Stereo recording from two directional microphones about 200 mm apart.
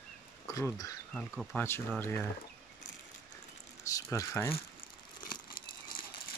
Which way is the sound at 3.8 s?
15° left (ahead or behind).